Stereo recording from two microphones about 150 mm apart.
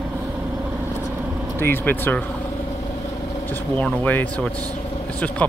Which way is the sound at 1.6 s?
15° left (ahead or behind).